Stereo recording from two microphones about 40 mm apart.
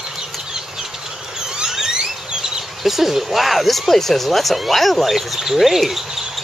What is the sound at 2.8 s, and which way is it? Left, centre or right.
Speech, centre.